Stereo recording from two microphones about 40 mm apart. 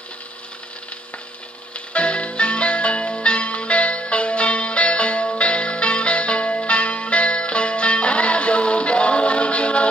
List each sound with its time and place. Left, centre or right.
2.0 s music: left